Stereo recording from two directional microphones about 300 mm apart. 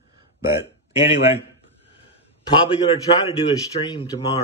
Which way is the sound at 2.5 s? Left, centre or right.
Centre.